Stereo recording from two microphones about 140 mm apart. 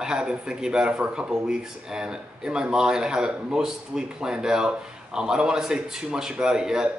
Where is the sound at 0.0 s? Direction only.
5° right (ahead or behind).